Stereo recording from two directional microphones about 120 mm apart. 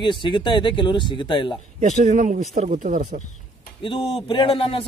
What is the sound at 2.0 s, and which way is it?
Speech, 85° right.